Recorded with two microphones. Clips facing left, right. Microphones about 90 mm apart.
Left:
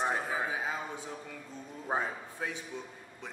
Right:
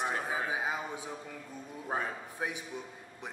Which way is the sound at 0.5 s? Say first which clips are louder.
Right 1 dB; 15° right (ahead or behind).